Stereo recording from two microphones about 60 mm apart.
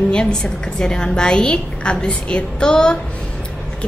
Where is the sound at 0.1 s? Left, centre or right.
Centre.